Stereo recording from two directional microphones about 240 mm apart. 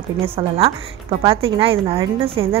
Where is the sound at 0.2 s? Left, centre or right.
Right.